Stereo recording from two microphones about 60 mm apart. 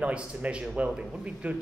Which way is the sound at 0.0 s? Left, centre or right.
Right.